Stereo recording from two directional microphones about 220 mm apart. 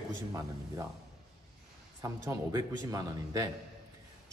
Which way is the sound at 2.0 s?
15° right (ahead or behind).